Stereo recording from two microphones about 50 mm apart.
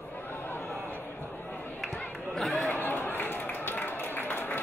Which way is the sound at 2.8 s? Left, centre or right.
Left.